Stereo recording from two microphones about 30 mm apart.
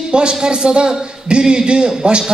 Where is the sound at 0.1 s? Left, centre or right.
Right.